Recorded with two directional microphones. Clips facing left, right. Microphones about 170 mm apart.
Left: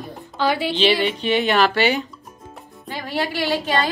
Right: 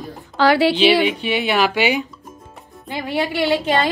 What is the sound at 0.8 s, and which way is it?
A woman's voice, 5° right (ahead or behind).